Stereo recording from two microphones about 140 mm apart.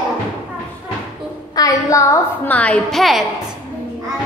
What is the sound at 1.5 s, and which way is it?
Speech, 25° left (ahead or behind).